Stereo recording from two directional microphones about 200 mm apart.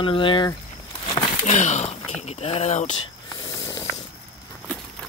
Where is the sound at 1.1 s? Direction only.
35° left (ahead or behind).